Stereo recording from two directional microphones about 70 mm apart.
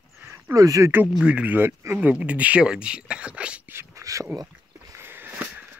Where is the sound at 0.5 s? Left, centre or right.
Right.